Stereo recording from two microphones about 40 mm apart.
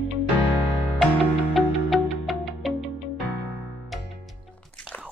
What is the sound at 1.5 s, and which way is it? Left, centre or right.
Music, centre.